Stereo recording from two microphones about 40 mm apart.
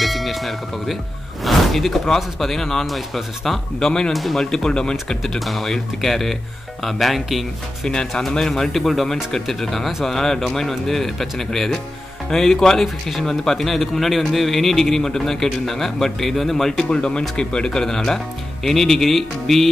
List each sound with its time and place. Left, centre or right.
0.0 s a man's voice: centre
4.4 s speech: centre
5.2 s a man's voice: centre
8.3 s a man's voice: centre
16.9 s speech: left; by 19.7 s centre